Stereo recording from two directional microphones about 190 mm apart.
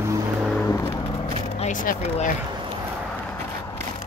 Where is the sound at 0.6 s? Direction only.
15° left (ahead or behind).